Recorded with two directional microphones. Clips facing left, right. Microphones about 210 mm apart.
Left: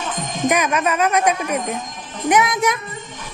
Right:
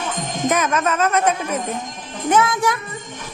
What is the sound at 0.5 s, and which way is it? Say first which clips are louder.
Speech: left 1 dB; 15° left (ahead or behind).